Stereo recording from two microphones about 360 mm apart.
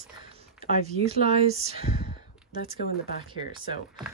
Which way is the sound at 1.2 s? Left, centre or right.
Centre.